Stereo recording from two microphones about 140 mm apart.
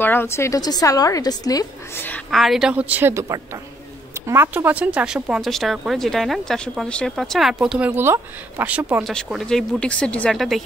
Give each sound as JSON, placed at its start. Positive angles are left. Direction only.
{"t": 0.0, "sound": "a woman's voice", "side_deg": 15}
{"t": 2.0, "sound": "a woman's voice", "side_deg": 10}
{"t": 2.3, "sound": "a woman's voice", "side_deg": 0}
{"t": 8.0, "sound": "a woman's voice", "side_deg": -15}
{"t": 9.0, "sound": "speech", "side_deg": 0}